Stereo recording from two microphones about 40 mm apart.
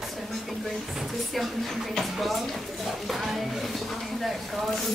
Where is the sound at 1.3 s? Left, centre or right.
Centre.